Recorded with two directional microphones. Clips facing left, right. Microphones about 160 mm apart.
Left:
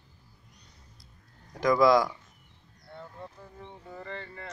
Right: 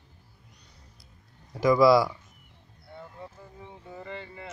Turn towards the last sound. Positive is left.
turn(degrees=-15)  # may be behind; listen again after turning